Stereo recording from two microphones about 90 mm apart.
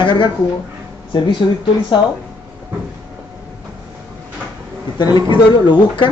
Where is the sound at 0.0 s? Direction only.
60° left (ahead or behind).